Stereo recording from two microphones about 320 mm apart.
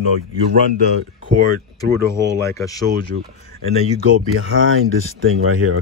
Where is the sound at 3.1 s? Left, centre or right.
Right.